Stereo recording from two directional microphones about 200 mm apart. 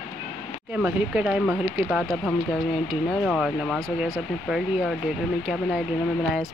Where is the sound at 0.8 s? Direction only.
5° right (ahead or behind).